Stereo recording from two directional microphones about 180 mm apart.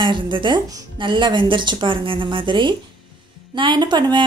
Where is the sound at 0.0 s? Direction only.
25° right (ahead or behind).